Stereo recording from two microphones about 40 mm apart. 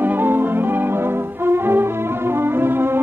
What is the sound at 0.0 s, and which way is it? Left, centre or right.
Music, right.